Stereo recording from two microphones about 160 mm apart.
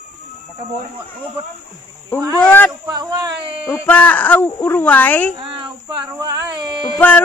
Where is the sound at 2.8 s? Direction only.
25° right (ahead or behind).